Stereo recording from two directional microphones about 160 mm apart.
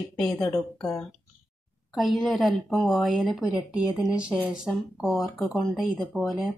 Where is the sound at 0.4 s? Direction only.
20° left (ahead or behind).